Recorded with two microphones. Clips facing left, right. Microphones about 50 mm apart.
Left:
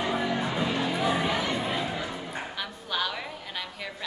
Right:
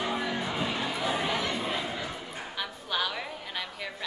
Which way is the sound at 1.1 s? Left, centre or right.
Centre.